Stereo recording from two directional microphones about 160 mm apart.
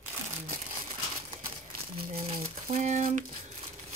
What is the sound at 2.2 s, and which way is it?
Crumpling, 35° right (ahead or behind).